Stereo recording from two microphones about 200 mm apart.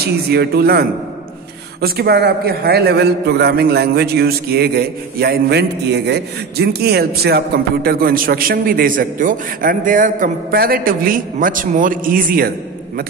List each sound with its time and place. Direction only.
0.0 s a man's voice: 50° right (ahead or behind)